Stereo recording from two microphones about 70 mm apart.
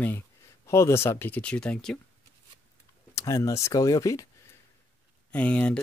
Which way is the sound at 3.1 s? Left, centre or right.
Left.